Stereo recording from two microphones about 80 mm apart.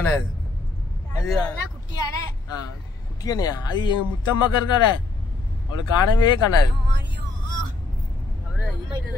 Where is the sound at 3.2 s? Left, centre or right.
Left.